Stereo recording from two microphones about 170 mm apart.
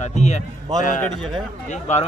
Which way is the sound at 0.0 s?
40° left (ahead or behind).